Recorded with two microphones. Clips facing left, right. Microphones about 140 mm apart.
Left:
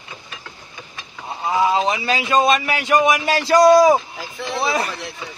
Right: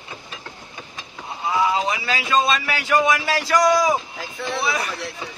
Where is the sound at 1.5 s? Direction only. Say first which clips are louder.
Left 3 dB; 25° left (ahead or behind).